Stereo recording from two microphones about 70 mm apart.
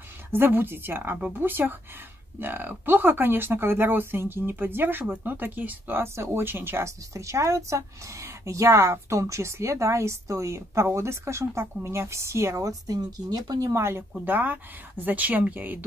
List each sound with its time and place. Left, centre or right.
0.3 s speech: right
6.1 s speech: right